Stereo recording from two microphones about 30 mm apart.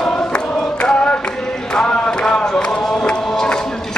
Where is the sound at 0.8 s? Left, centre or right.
Left.